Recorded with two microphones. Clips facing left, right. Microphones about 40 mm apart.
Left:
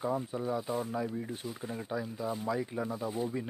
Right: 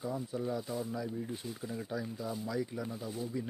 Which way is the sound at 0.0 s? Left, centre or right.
Left.